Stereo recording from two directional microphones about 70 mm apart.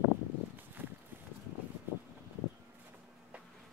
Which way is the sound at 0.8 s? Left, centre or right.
Right.